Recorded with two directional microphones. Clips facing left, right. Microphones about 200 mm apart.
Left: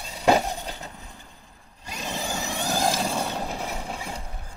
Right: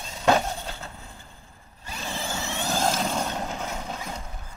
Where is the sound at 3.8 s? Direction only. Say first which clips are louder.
Left 1 dB; 10° left (ahead or behind).